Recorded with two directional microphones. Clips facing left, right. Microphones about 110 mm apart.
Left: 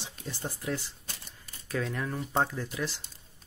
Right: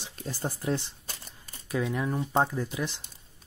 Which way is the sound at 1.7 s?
15° right (ahead or behind).